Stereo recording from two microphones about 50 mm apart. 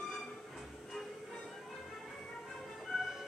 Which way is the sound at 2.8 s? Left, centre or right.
Centre.